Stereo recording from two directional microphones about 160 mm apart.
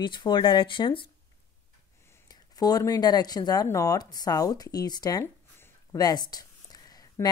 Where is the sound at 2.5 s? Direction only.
25° left (ahead or behind).